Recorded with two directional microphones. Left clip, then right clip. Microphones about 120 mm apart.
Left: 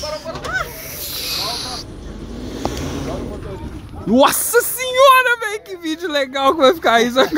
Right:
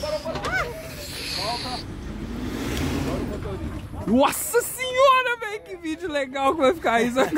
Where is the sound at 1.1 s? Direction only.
5° right (ahead or behind).